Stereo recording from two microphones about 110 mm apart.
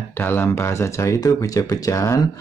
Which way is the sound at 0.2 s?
20° left (ahead or behind).